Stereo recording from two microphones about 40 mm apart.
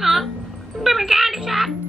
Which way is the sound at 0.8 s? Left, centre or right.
Centre.